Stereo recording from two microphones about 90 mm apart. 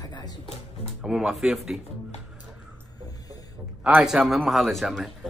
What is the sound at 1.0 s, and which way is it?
Speech, 5° right (ahead or behind).